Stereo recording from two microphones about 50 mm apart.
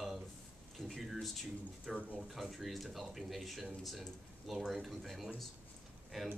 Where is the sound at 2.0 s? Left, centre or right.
Right.